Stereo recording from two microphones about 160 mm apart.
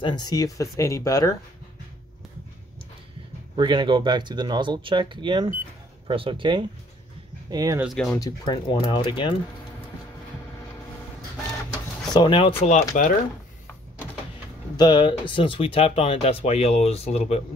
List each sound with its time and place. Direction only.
0.0 s speech: 25° left (ahead or behind)
3.5 s speech: 30° right (ahead or behind)
7.8 s speech: centre (ahead or behind)
8.2 s speech: 30° left (ahead or behind)
12.1 s speech: 30° left (ahead or behind)
12.9 s speech: 50° left (ahead or behind)
14.8 s speech: 30° left (ahead or behind)